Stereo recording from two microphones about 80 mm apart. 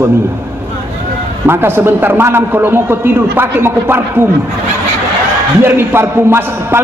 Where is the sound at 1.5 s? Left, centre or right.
Right.